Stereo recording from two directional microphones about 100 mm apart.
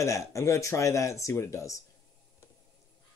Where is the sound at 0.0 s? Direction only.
30° left (ahead or behind).